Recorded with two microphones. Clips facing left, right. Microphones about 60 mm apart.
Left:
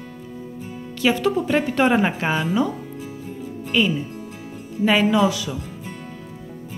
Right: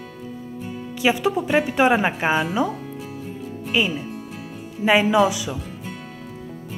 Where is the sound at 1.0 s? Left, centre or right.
Centre.